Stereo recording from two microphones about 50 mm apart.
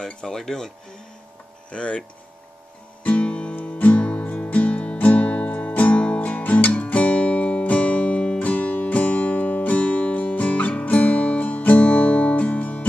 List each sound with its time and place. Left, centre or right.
0.0 s speech: centre
1.7 s speech: left
3.0 s guitar: left
3.5 s music: left